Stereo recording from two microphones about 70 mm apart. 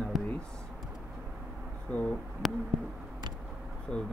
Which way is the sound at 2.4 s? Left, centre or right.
Centre.